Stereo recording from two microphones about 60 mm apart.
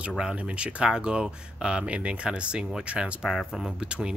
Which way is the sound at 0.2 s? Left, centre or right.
Centre.